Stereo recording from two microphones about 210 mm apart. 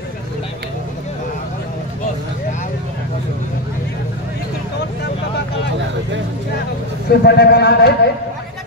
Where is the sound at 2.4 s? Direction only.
40° left (ahead or behind).